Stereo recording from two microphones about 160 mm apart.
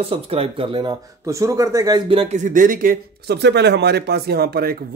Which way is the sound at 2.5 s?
60° right (ahead or behind).